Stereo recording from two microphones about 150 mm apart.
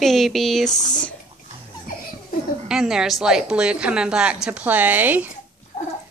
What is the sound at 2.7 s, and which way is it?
A woman's voice, 5° right (ahead or behind).